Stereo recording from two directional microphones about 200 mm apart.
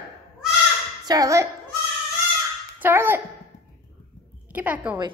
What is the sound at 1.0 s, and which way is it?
Speech, 15° right (ahead or behind).